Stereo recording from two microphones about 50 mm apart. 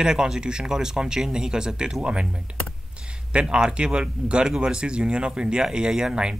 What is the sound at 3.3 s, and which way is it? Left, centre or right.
Speech, right.